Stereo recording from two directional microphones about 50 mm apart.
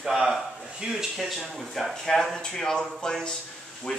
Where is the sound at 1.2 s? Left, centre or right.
Centre.